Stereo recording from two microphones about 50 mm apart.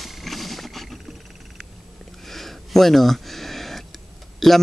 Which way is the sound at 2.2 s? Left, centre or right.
Centre.